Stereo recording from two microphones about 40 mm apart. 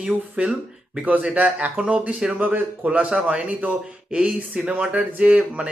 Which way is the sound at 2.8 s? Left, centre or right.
Right.